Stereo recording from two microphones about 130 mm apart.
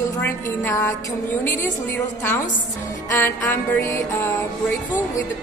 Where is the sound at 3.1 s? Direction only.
20° left (ahead or behind).